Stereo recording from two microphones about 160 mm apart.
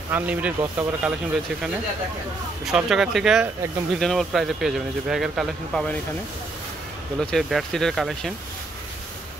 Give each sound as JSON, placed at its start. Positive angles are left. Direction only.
{"t": 0.1, "sound": "speech", "side_deg": -10}
{"t": 2.6, "sound": "speech", "side_deg": -5}
{"t": 7.2, "sound": "speech", "side_deg": 5}